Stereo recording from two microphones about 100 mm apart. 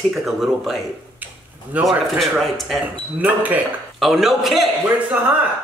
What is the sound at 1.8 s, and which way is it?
Speech, centre (ahead or behind).